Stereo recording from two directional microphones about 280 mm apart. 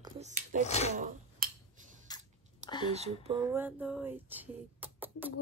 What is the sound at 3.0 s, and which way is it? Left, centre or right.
Speech, right.